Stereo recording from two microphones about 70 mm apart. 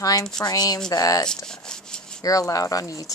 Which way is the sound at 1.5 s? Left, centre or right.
Centre.